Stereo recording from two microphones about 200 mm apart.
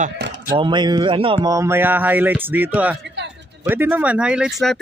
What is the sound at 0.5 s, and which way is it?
Speech, 25° right (ahead or behind).